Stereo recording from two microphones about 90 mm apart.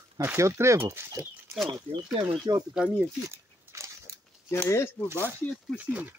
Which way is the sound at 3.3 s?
30° right (ahead or behind).